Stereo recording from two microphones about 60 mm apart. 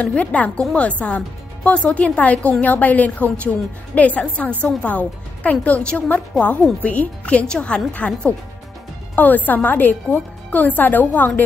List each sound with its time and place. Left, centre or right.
0.0 s speech: left